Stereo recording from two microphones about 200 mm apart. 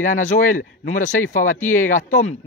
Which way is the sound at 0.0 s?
40° left (ahead or behind).